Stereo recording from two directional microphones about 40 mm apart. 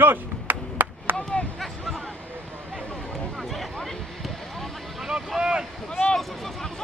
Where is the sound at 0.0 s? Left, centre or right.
Right.